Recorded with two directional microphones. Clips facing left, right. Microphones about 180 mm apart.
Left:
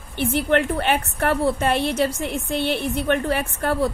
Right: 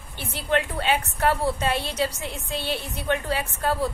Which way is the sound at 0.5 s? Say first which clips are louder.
Left 1 dB; 55° left (ahead or behind).